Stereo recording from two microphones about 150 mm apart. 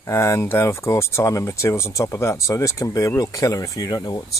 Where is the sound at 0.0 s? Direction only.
20° left (ahead or behind).